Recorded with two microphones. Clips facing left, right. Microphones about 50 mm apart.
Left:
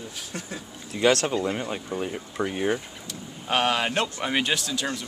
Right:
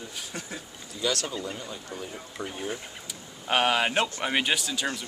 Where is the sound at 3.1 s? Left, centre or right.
Centre.